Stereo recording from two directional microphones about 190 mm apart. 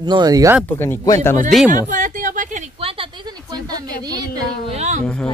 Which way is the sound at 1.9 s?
45° right (ahead or behind).